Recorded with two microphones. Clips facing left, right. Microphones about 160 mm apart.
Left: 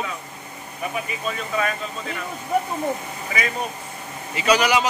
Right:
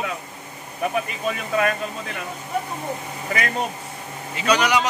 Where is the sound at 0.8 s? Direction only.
60° right (ahead or behind).